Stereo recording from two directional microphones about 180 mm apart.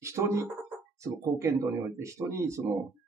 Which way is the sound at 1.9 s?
15° right (ahead or behind).